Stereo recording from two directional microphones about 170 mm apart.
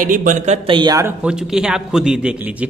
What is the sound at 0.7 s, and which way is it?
Speech, 25° right (ahead or behind).